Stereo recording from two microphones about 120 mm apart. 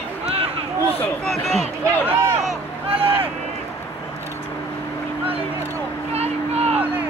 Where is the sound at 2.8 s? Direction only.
50° right (ahead or behind).